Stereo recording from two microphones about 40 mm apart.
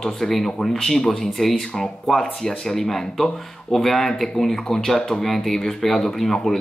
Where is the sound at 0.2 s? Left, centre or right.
Centre.